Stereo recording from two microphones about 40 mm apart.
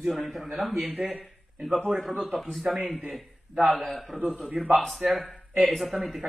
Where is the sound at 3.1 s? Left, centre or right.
Centre.